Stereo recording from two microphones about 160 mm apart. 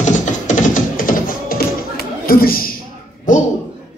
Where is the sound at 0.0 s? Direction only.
50° left (ahead or behind).